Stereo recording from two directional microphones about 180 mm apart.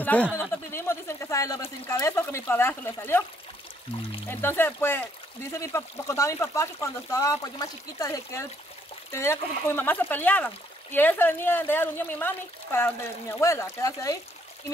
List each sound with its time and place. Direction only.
0.0 s speech: 10° left (ahead or behind)
4.3 s speech: 10° left (ahead or behind)